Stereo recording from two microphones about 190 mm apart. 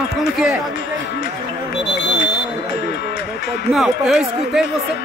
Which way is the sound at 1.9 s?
70° left (ahead or behind).